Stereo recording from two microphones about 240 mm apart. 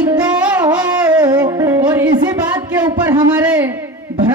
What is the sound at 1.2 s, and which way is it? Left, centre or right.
Music, centre.